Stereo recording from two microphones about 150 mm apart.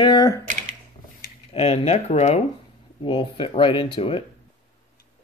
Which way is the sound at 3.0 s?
35° left (ahead or behind).